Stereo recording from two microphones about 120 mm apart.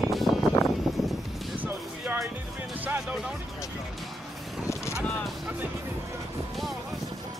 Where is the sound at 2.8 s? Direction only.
10° right (ahead or behind).